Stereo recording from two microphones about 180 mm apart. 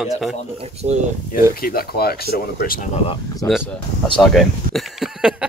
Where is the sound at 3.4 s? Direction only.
15° left (ahead or behind).